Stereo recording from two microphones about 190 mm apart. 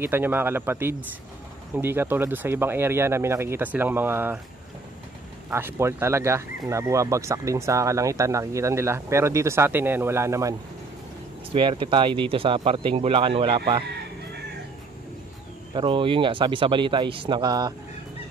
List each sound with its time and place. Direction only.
0.0 s speech: 10° right (ahead or behind)
5.5 s speech: 10° right (ahead or behind)
11.5 s speech: 25° right (ahead or behind)
15.7 s speech: 25° right (ahead or behind)